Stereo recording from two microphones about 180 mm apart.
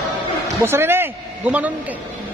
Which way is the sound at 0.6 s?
15° right (ahead or behind).